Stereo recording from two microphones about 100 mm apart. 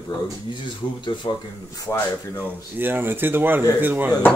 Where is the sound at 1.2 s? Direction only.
45° left (ahead or behind).